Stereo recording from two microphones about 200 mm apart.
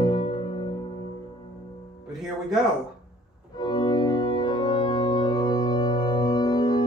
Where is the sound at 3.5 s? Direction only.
20° left (ahead or behind).